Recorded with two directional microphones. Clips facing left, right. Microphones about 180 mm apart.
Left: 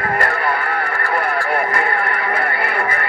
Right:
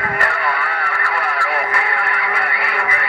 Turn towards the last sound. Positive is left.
turn(degrees=40)  # may be behind; listen again after turning